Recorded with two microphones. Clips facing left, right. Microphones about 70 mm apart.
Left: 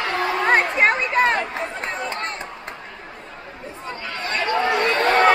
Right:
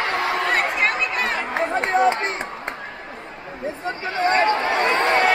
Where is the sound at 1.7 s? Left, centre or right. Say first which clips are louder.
Right 10 dB; right.